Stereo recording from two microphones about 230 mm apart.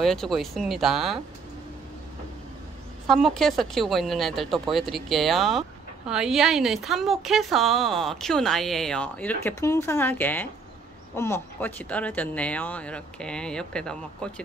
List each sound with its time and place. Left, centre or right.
0.0 s speech: centre
3.1 s speech: centre